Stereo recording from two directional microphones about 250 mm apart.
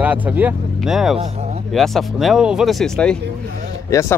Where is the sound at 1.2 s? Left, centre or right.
Right.